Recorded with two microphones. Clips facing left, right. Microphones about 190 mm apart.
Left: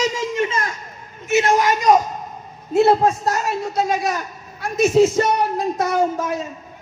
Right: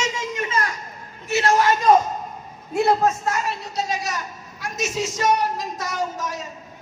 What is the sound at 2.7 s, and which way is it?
A man's voice, 25° left (ahead or behind).